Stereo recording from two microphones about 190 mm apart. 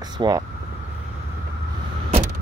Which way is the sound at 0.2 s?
20° right (ahead or behind).